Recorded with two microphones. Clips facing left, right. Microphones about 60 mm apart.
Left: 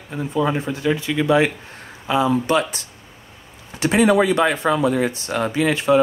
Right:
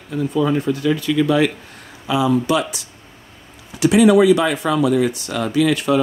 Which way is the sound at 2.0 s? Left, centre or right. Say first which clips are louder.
Right 1 dB; left.